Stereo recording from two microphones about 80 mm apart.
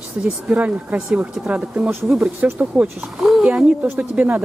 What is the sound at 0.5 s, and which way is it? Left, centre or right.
Speech, centre.